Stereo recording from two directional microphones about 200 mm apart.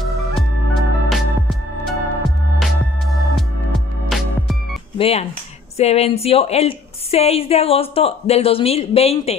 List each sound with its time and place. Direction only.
1.0 s music: centre (ahead or behind)
4.9 s a woman's voice: 30° left (ahead or behind)